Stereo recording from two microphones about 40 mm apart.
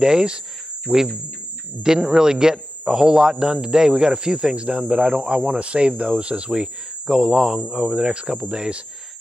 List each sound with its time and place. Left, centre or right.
0.0 s a man's voice: right
7.1 s a man's voice: centre
7.6 s speech: right